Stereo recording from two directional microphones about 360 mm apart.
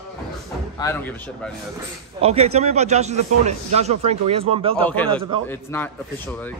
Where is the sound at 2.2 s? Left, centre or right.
Centre.